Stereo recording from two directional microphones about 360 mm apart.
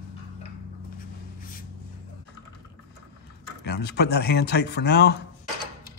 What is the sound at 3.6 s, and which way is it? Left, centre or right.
Speech, left.